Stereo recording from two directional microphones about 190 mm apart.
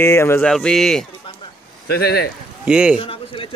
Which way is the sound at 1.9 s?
55° left (ahead or behind).